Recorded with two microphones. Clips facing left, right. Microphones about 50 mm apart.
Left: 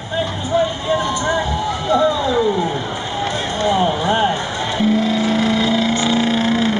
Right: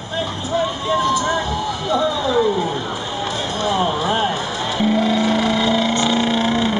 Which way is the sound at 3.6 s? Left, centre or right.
Centre.